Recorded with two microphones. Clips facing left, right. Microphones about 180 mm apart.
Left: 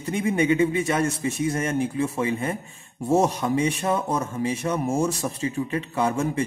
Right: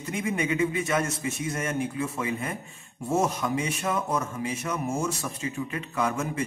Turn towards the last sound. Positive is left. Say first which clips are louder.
# left 4 dB
turn(degrees=30)  # may be behind; listen again after turning